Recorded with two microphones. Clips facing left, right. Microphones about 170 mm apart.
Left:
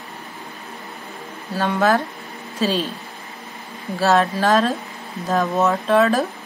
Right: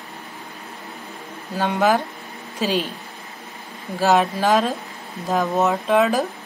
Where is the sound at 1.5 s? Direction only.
15° right (ahead or behind).